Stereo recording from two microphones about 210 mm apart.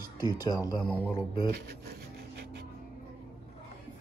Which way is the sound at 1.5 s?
45° right (ahead or behind).